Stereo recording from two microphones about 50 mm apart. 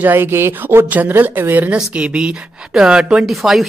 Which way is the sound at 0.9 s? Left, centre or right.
Right.